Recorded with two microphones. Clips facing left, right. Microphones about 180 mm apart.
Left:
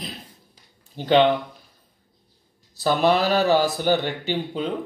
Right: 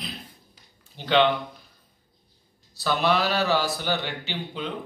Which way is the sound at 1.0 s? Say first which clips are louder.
Left 6 dB; 40° left (ahead or behind).